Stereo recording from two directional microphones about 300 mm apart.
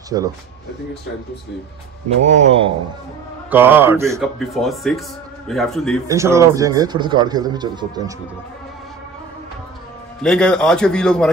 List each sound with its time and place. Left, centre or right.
0.1 s a man's voice: centre
2.0 s speech: right
3.4 s a man's voice: centre
6.0 s a man's voice: centre
10.2 s a man's voice: centre